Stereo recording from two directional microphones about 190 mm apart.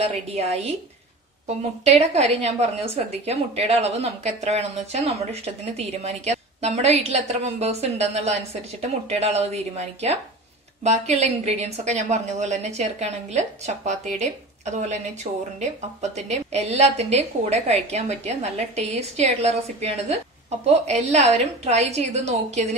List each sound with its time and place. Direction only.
0.0 s a woman's voice: 35° right (ahead or behind)
2.0 s a woman's voice: 35° right (ahead or behind)